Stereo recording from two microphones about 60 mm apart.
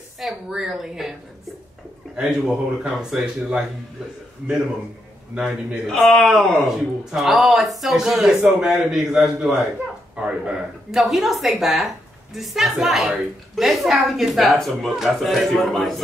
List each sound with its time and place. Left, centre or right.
0.2 s a woman's voice: centre
2.1 s a man's voice: centre
5.3 s a man's voice: centre
5.9 s a woman's voice: centre
10.1 s a man's voice: centre
10.9 s a woman's voice: centre